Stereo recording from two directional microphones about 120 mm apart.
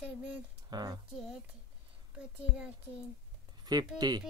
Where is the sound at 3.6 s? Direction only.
35° right (ahead or behind).